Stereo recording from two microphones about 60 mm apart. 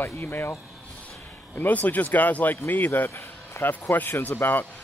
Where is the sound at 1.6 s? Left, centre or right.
Left.